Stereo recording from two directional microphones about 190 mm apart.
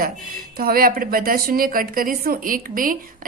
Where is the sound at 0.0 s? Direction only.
50° right (ahead or behind).